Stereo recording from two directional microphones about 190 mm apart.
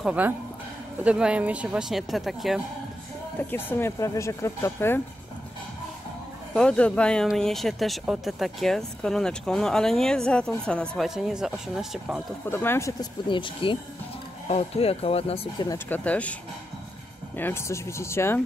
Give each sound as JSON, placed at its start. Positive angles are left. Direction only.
{"t": 0.0, "sound": "speech", "side_deg": -5}
{"t": 3.3, "sound": "speech", "side_deg": 10}
{"t": 6.5, "sound": "speech", "side_deg": 5}
{"t": 12.4, "sound": "speech", "side_deg": 10}
{"t": 15.7, "sound": "speech", "side_deg": 10}
{"t": 17.4, "sound": "speech", "side_deg": 10}